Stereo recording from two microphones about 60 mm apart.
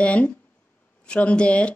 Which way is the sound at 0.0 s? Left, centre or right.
Left.